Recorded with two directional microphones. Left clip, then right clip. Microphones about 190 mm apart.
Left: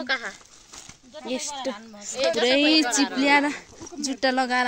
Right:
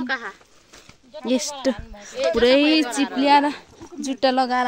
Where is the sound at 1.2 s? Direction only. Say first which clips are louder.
Right 7 dB; 55° right (ahead or behind).